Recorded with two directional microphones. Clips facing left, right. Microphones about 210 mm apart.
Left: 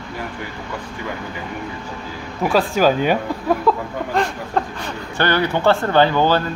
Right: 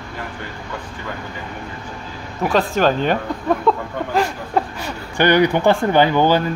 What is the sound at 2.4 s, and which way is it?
Speech, centre (ahead or behind).